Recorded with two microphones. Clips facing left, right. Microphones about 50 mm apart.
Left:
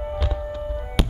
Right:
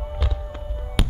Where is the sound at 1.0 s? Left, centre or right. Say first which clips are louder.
Left 1 dB; centre.